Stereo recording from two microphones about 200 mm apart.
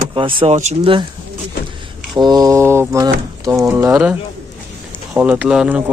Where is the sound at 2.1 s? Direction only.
20° right (ahead or behind).